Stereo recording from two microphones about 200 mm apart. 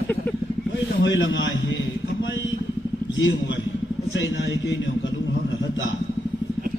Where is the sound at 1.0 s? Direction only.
70° left (ahead or behind).